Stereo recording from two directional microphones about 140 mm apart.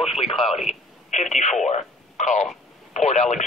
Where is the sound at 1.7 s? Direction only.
60° left (ahead or behind).